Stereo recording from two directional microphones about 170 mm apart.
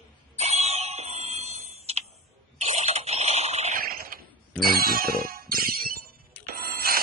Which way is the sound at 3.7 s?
60° right (ahead or behind).